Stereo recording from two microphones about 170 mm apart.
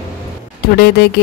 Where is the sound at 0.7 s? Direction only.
70° left (ahead or behind).